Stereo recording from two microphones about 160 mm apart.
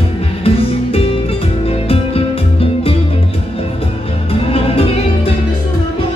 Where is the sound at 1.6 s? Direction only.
35° left (ahead or behind).